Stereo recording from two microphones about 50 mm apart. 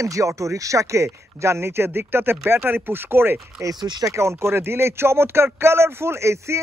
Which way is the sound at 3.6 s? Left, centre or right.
Right.